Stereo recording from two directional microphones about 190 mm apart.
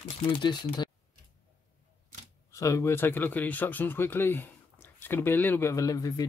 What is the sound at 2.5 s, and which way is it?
Speech, 15° left (ahead or behind).